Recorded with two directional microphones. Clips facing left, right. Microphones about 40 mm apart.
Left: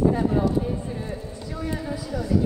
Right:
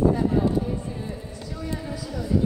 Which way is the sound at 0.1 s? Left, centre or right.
Centre.